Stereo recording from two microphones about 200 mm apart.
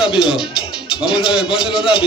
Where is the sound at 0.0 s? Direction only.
25° left (ahead or behind).